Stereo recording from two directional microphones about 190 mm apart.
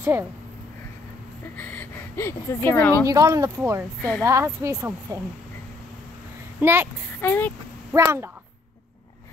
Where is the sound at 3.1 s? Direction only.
15° right (ahead or behind).